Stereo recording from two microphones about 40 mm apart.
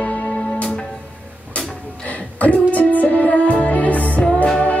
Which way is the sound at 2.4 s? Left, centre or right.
Left.